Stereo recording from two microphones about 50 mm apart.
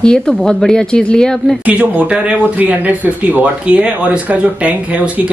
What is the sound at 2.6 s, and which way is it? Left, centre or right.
Speech, right.